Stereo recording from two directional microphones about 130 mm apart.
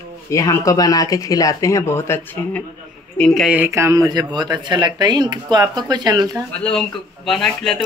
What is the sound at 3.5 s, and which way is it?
Speech, 20° right (ahead or behind).